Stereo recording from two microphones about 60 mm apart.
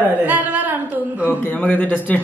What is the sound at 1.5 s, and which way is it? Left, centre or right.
Speech, left.